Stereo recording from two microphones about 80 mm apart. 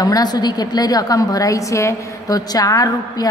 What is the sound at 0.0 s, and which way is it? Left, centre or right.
A woman's voice, left.